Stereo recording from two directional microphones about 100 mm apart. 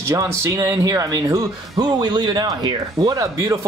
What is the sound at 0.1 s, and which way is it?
Speech, 40° right (ahead or behind).